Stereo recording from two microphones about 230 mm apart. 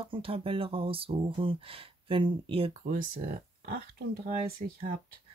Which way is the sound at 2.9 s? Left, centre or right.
Right.